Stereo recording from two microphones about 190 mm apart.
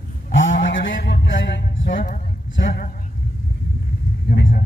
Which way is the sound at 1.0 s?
70° left (ahead or behind).